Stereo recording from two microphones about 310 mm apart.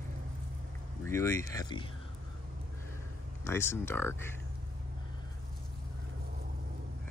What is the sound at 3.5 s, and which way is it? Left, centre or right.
Speech, centre.